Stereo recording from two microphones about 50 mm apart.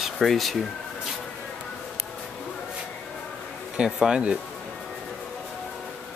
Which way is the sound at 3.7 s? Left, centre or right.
Centre.